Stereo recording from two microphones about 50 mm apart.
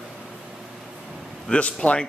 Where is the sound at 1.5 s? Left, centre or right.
Left.